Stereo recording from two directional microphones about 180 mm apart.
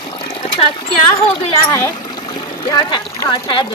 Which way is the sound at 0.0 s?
25° left (ahead or behind).